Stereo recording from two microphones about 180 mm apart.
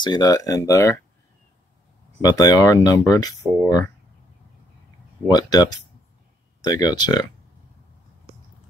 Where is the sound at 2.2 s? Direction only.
20° left (ahead or behind).